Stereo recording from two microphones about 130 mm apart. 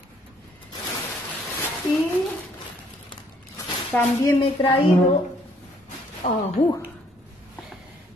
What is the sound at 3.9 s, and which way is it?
Speech, 10° left (ahead or behind).